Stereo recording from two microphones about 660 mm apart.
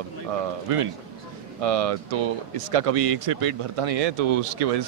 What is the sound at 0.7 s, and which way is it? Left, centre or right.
Speech, right.